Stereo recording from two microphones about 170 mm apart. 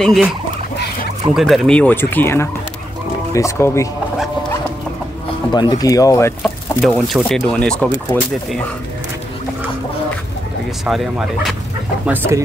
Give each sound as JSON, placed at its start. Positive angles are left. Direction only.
{"t": 0.0, "sound": "speech", "side_deg": 0}
{"t": 1.3, "sound": "speech", "side_deg": 0}
{"t": 5.5, "sound": "speech", "side_deg": 25}
{"t": 6.4, "sound": "speech", "side_deg": 0}
{"t": 8.1, "sound": "speech", "side_deg": 15}
{"t": 10.9, "sound": "speech", "side_deg": 0}